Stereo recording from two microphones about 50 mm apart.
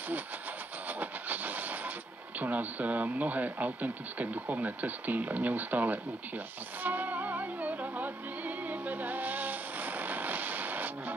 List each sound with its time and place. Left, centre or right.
0.8 s train: right
2.4 s speech: right
6.8 s music: right